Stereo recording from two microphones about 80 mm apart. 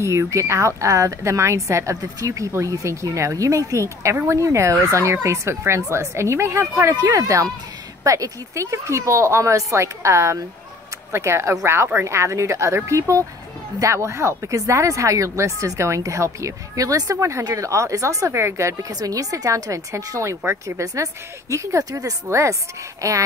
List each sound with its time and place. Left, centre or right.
0.0 s speech: right
6.9 s speech: right
18.9 s speech: right